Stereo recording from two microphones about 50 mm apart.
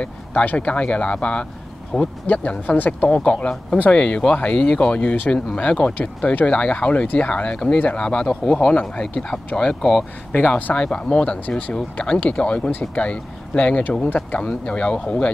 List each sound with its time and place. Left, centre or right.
0.3 s speech: left; by 2.1 s centre
2.2 s speech: left; by 9.4 s centre
9.8 s speech: centre
10.5 s speech: left